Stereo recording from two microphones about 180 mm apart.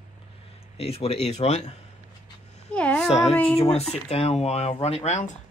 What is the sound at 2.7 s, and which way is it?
Speech, 5° left (ahead or behind).